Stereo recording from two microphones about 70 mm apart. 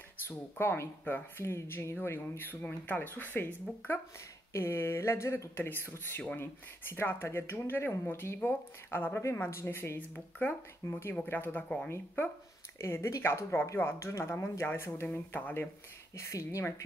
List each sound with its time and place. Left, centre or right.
0.6 s speech: left
12.8 s speech: left
16.2 s speech: left